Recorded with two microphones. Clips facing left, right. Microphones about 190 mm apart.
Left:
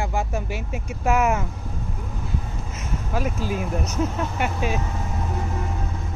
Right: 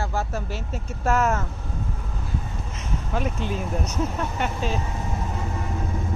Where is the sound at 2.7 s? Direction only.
5° left (ahead or behind).